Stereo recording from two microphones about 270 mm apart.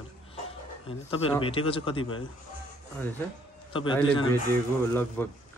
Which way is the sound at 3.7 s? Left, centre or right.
Centre.